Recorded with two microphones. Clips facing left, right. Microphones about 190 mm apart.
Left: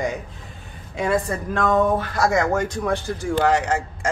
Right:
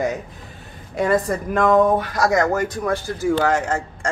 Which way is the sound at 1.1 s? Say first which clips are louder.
Right 2 dB; 5° right (ahead or behind).